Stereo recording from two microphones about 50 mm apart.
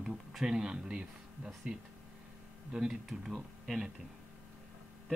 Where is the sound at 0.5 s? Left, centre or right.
Centre.